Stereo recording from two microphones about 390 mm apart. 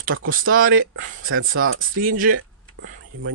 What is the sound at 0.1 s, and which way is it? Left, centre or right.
Speech, right.